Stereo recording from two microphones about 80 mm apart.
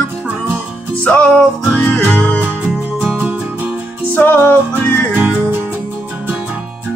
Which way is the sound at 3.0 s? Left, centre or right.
Centre.